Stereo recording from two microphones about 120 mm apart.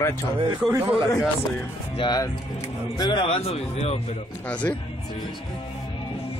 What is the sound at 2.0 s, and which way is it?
Speech, 35° left (ahead or behind).